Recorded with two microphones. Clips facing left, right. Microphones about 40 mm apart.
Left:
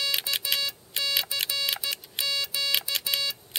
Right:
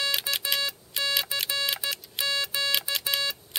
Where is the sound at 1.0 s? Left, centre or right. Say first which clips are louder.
Right 1 dB; centre.